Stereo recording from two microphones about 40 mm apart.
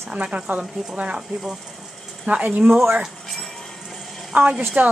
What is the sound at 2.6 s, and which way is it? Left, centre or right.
Speech, right.